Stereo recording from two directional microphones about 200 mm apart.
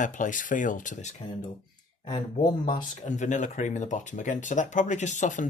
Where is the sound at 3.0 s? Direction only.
35° left (ahead or behind).